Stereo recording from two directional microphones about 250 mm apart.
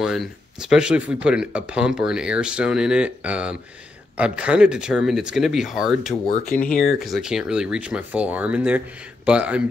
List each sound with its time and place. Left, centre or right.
0.0 s speech: centre
6.2 s speech: left
6.9 s speech: centre